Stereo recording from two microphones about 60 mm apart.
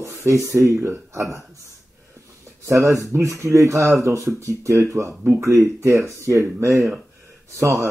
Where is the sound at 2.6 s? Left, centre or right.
Right.